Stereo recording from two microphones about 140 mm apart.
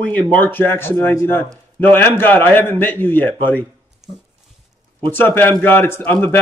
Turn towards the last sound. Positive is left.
turn(degrees=15)  # may be behind; listen again after turning